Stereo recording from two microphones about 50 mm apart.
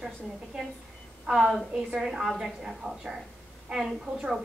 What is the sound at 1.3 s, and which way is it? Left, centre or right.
Speech, right.